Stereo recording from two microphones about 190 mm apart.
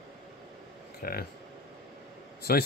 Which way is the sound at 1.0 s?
50° left (ahead or behind).